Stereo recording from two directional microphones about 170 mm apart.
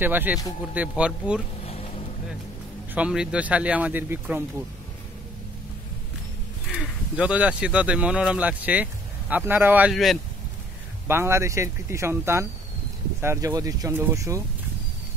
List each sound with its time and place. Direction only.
0.0 s speech: 10° right (ahead or behind)
1.6 s vehicle: 35° left (ahead or behind)
2.9 s speech: 5° right (ahead or behind)
6.7 s speech: 5° right (ahead or behind)
11.1 s speech: 15° right (ahead or behind)